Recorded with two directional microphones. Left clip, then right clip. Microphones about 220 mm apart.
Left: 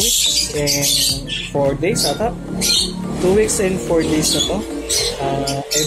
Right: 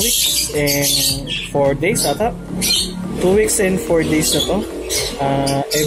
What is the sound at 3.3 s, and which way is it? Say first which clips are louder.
Speech: right 1 dB; 30° right (ahead or behind).